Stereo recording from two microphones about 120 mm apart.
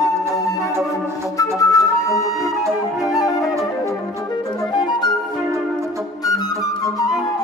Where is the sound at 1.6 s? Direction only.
25° left (ahead or behind).